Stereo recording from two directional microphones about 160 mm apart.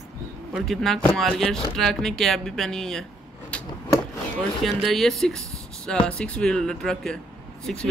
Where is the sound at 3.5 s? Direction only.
5° left (ahead or behind).